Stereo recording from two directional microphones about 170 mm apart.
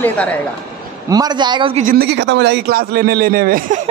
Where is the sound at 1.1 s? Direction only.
25° right (ahead or behind).